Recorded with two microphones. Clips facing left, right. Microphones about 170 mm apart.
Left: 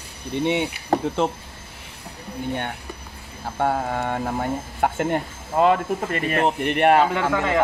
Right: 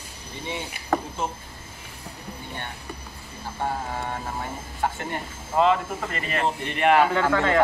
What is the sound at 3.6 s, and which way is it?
Speech, 60° left (ahead or behind).